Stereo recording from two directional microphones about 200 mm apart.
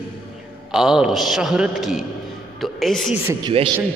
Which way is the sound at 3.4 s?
30° right (ahead or behind).